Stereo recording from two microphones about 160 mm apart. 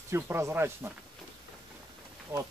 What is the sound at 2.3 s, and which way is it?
Speech, 15° right (ahead or behind).